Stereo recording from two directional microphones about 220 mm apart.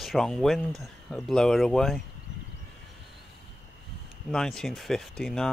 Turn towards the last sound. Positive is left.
turn(degrees=0)  # may be behind; listen again after turning